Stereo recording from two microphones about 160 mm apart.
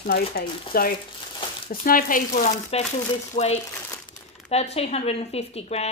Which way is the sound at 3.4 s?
40° left (ahead or behind).